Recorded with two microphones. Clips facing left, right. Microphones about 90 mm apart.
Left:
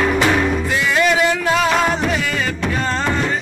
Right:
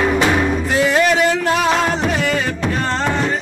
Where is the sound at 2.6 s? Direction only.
20° right (ahead or behind).